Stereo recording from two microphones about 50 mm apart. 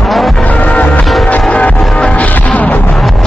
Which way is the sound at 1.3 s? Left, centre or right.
Left.